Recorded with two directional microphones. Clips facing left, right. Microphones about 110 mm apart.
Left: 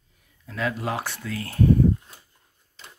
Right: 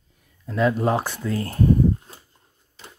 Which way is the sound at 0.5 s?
35° right (ahead or behind).